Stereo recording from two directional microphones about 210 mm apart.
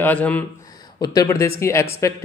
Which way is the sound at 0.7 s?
20° left (ahead or behind).